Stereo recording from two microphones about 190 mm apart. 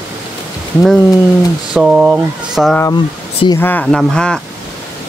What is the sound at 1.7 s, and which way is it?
Speech, 5° right (ahead or behind).